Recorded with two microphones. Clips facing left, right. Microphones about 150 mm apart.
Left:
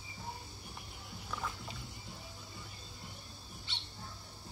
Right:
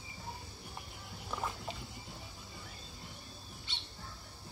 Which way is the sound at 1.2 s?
20° right (ahead or behind).